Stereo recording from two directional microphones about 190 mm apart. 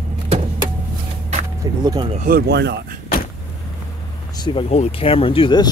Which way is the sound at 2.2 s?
50° right (ahead or behind).